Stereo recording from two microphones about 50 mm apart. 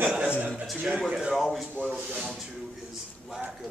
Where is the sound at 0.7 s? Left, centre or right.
Right.